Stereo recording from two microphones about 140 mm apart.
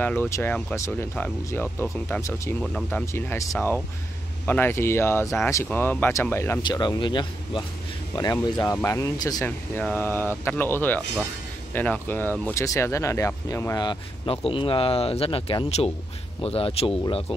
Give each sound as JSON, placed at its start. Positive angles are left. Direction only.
{"t": 0.0, "sound": "speech", "side_deg": 15}
{"t": 2.6, "sound": "speech", "side_deg": 5}
{"t": 3.1, "sound": "speech", "side_deg": 20}
{"t": 6.6, "sound": "speech", "side_deg": 30}
{"t": 9.4, "sound": "speech", "side_deg": 10}
{"t": 13.8, "sound": "speech", "side_deg": 40}